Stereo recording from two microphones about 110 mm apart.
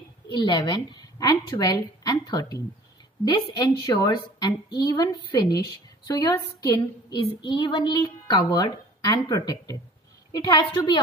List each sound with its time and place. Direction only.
0.3 s a woman's voice: 40° left (ahead or behind)